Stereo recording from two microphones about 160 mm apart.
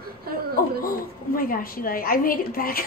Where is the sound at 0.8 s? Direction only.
65° left (ahead or behind).